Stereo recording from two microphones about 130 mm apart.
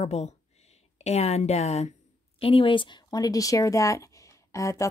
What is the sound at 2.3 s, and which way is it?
Speech, 45° left (ahead or behind).